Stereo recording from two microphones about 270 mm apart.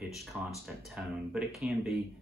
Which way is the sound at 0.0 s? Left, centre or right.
Centre.